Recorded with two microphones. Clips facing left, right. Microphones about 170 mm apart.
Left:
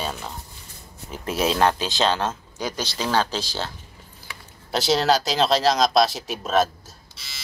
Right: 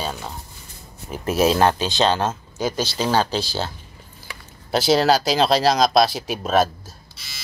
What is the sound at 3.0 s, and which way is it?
Speech, 30° right (ahead or behind).